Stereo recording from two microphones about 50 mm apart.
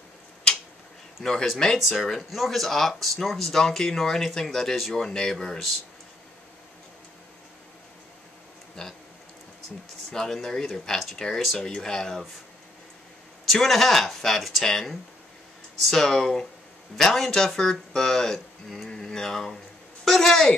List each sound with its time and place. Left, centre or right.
1.2 s speech: centre
1.8 s speech: centre
10.1 s speech: centre
13.5 s speech: centre
20.1 s a sound: centre